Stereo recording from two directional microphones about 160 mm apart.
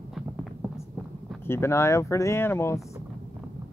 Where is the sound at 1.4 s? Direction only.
15° left (ahead or behind).